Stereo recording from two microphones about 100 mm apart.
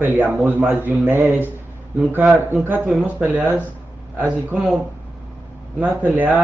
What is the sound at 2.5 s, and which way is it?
Speech, 20° right (ahead or behind).